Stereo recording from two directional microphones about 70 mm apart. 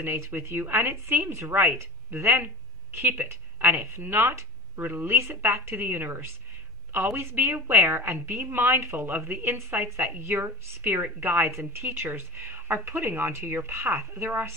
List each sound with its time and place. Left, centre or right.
0.0 s a woman's voice: right